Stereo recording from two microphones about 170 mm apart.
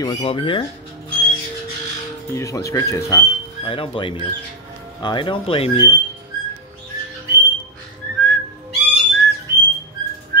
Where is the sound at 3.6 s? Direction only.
30° left (ahead or behind).